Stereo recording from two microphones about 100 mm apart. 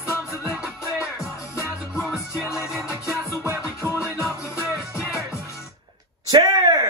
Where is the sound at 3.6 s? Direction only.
25° left (ahead or behind).